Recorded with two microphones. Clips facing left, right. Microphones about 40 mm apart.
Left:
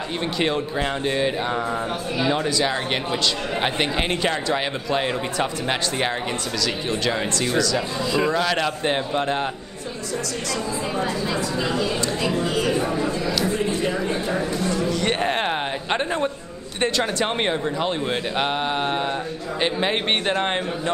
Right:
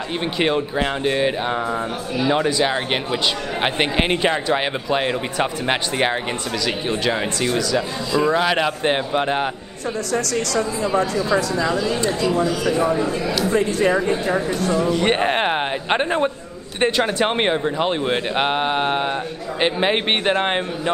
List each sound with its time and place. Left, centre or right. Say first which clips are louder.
0.2 s a man's voice: right 3 dB; centre
11.0 s speech: right 7 dB; right
12.4 s a man's voice: right 1 dB; left
12.7 s speech: right 4 dB; right
14.9 s a man's voice: right 4 dB; centre